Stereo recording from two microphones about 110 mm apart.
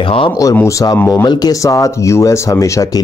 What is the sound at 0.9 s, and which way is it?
Speech, 20° left (ahead or behind).